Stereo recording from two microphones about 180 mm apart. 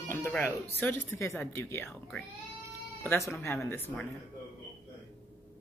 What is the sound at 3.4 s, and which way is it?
Speech, 15° left (ahead or behind).